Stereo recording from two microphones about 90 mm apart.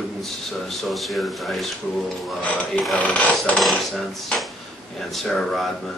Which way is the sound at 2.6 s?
5° left (ahead or behind).